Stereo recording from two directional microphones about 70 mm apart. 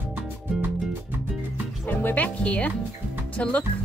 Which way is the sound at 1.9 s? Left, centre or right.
Left.